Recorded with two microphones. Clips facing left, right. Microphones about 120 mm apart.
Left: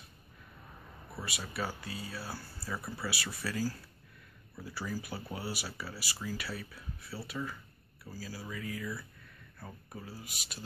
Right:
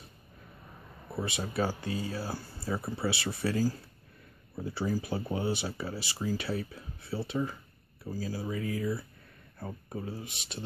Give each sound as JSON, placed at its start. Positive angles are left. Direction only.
{"t": 1.2, "sound": "speech", "side_deg": -30}